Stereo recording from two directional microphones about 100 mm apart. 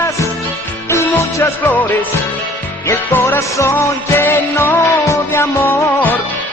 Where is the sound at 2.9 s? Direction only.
20° left (ahead or behind).